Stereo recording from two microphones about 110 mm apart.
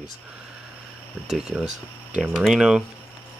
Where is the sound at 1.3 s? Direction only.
5° right (ahead or behind).